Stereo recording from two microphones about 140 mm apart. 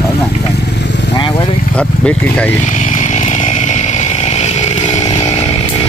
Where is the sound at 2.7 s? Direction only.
60° left (ahead or behind).